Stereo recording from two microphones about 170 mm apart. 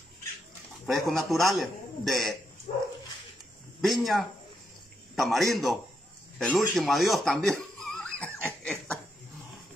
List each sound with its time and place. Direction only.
0.8 s a man's voice: centre (ahead or behind)
2.7 s dog: 35° left (ahead or behind)
3.8 s a man's voice: centre (ahead or behind)
8.5 s laughter: 5° left (ahead or behind)